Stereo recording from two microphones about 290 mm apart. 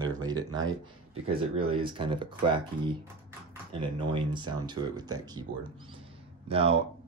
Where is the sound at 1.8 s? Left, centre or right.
Centre.